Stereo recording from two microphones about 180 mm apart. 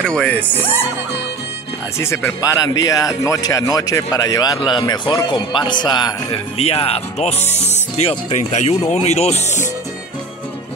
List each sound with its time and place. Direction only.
0.0 s speech: 5° left (ahead or behind)
2.0 s speech: 15° left (ahead or behind); by 9.7 s 35° left (ahead or behind)